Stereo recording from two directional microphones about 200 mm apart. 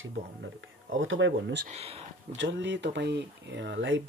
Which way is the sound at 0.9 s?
75° right (ahead or behind).